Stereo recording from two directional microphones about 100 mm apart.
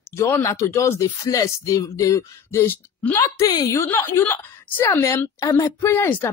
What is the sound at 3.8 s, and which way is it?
Speech, 25° left (ahead or behind).